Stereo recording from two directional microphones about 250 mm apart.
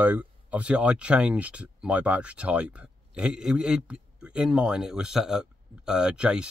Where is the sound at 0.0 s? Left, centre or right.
Centre.